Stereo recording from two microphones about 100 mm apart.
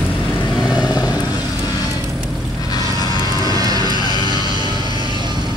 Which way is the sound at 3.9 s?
45° left (ahead or behind).